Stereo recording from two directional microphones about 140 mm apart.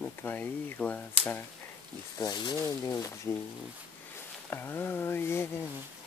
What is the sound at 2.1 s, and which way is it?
Speech, 30° left (ahead or behind).